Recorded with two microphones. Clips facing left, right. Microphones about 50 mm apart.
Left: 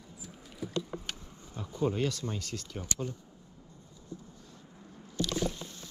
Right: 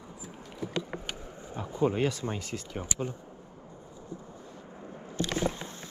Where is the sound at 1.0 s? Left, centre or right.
Centre.